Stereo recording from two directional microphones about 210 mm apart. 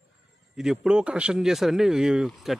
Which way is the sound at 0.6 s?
5° right (ahead or behind).